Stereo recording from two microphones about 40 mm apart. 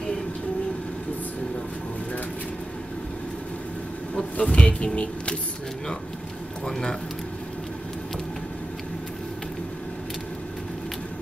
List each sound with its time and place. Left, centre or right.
4.1 s speech: left
6.6 s speech: centre